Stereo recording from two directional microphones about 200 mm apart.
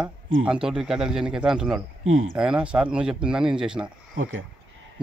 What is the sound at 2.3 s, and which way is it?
Speech, 5° right (ahead or behind).